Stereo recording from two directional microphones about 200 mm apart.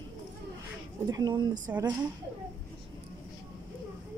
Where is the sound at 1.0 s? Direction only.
20° right (ahead or behind).